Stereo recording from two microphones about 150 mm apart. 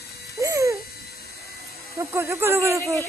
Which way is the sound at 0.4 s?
20° right (ahead or behind).